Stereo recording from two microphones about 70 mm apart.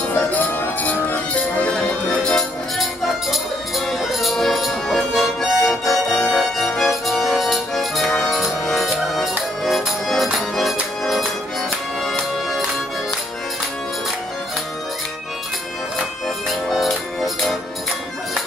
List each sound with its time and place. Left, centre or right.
0.1 s music: left
2.8 s music: centre
16.6 s music: centre